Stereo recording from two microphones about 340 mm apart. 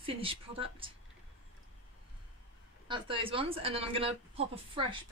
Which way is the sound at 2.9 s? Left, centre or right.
Centre.